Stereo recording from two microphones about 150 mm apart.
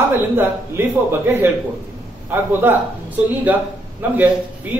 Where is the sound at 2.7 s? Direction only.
15° right (ahead or behind).